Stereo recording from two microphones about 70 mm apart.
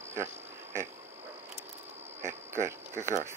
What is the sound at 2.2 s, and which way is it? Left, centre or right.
Speech, right.